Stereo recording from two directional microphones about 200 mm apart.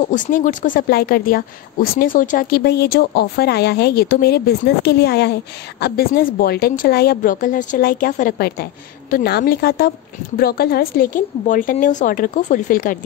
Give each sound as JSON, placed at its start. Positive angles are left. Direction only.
{"t": 0.1, "sound": "speech", "side_deg": 40}